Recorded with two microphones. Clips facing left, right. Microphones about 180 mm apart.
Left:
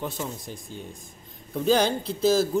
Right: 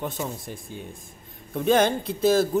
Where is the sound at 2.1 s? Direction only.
55° right (ahead or behind).